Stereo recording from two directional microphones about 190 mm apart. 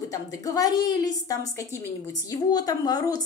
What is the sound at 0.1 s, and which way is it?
A woman's voice, 20° left (ahead or behind).